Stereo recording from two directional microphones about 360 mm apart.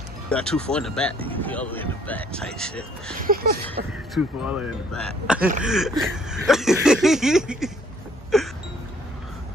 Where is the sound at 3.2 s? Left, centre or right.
Right.